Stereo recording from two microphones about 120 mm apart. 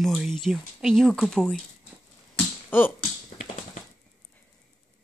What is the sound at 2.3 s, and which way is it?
Finger snapping, 15° left (ahead or behind).